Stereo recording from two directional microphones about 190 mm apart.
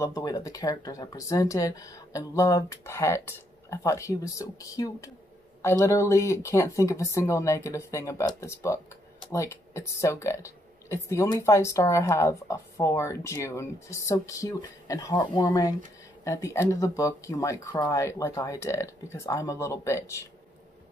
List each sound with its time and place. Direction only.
0.0 s speech: 20° left (ahead or behind)